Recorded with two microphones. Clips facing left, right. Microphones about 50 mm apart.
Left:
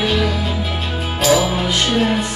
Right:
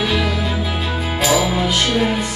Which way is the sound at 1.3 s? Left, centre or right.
Centre.